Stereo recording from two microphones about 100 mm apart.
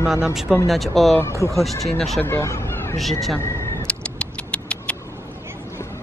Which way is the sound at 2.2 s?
25° left (ahead or behind).